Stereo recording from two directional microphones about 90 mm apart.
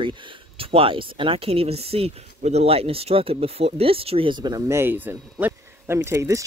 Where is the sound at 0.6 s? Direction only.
90° right.